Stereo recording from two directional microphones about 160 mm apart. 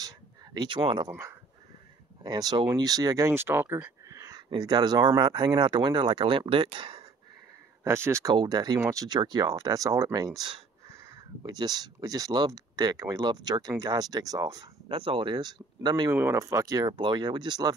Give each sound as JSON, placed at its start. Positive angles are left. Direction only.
{"t": 0.6, "sound": "speech", "side_deg": -30}
{"t": 2.2, "sound": "speech", "side_deg": -25}
{"t": 7.8, "sound": "speech", "side_deg": -15}